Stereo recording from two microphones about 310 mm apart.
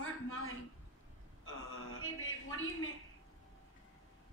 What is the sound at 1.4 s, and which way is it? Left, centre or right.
A woman's voice, left.